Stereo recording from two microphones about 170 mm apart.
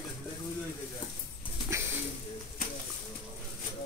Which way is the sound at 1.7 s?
15° right (ahead or behind).